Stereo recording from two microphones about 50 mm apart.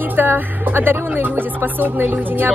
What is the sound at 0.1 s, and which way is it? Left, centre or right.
Speech, right.